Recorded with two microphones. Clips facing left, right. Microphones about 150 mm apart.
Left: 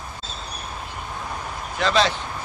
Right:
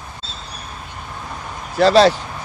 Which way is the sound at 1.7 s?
40° right (ahead or behind).